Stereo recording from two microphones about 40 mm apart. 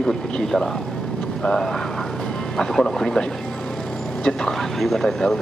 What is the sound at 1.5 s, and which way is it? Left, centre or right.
Speech, centre.